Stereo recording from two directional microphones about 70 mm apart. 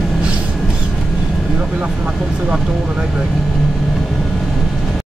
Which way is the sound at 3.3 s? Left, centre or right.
Centre.